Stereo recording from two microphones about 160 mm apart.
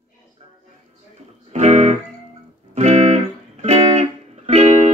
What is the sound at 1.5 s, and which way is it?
Music, 45° right (ahead or behind).